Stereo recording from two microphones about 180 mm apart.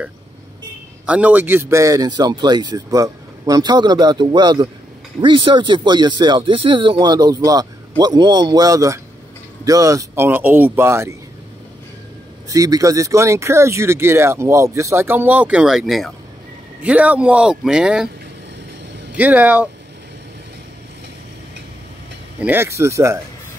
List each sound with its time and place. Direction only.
1.0 s a man's voice: 10° right (ahead or behind)
12.4 s speech: 20° right (ahead or behind); by 18.1 s 5° right (ahead or behind)
19.1 s speech: 10° right (ahead or behind)
22.4 s speech: 10° right (ahead or behind)